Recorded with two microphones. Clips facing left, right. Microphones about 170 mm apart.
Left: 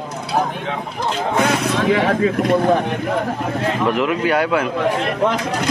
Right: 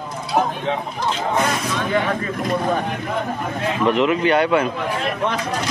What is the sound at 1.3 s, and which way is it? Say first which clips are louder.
Speech: left 6 dB; 70° left (ahead or behind).